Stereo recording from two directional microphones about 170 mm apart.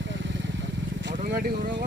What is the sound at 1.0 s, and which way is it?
Vehicle, 75° right (ahead or behind).